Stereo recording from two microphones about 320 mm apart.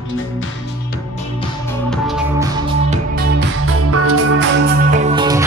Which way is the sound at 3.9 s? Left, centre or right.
Right.